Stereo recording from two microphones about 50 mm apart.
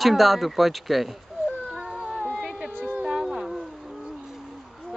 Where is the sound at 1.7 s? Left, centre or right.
Centre.